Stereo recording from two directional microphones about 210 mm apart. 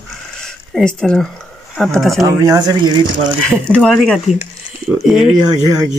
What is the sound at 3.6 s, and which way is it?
Speech, 5° left (ahead or behind).